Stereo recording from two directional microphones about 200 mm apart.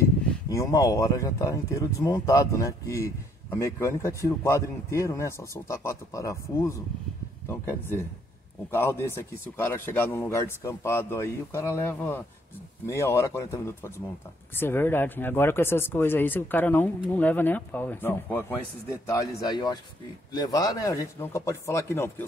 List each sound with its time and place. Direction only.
0.5 s speech: 15° left (ahead or behind)